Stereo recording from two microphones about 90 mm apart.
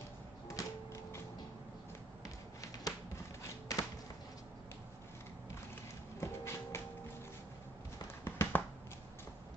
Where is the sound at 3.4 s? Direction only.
40° left (ahead or behind).